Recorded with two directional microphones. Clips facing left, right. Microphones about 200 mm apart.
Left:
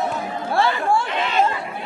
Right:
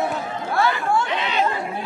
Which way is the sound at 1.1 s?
50° left (ahead or behind).